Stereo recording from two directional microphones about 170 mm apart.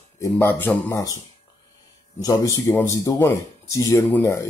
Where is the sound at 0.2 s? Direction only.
15° left (ahead or behind).